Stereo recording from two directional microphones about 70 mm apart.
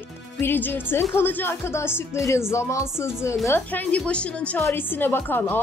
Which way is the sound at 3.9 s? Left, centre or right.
Centre.